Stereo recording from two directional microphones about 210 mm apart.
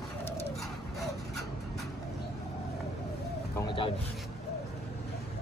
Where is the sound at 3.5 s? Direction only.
20° left (ahead or behind).